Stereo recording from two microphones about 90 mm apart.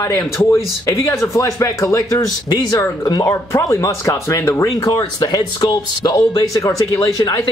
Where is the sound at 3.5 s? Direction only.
40° left (ahead or behind).